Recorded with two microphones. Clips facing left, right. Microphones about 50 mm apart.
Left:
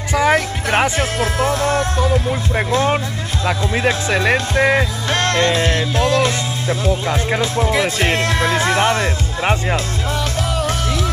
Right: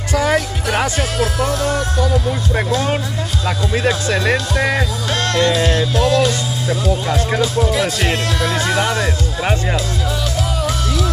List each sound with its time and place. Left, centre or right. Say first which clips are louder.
0.1 s speech: left 1 dB; left
3.4 s speech: left 1 dB; left